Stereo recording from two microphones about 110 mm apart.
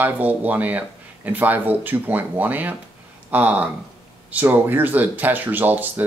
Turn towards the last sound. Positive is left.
turn(degrees=-20)  # may be behind; listen again after turning